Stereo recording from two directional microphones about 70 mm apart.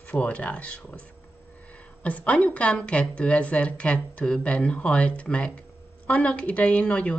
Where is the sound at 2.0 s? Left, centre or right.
Left.